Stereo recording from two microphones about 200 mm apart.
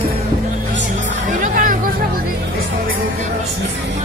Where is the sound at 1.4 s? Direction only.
45° right (ahead or behind).